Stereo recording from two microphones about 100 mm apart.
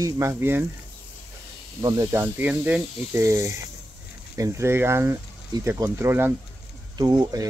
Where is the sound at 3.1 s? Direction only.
25° right (ahead or behind).